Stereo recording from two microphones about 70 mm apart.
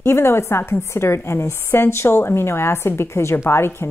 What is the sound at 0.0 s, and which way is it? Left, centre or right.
A woman's voice, left.